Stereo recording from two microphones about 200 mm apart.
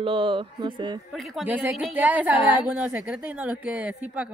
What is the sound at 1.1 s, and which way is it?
Speech, 5° right (ahead or behind).